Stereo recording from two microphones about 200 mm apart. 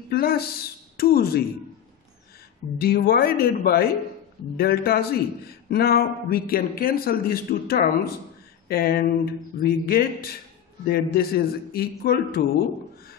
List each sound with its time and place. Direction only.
0.1 s a sound: 50° left (ahead or behind)
0.9 s speech: 50° left (ahead or behind)
2.8 s a man's voice: 50° left (ahead or behind)